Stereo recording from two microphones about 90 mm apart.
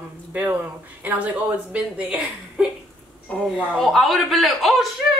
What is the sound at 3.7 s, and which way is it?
A man's voice, centre (ahead or behind).